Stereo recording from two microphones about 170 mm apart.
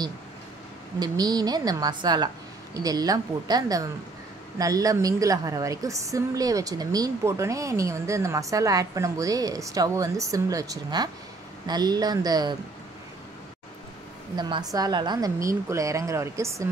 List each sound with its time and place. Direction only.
0.9 s a woman's voice: 25° right (ahead or behind)
14.3 s a woman's voice: 25° right (ahead or behind)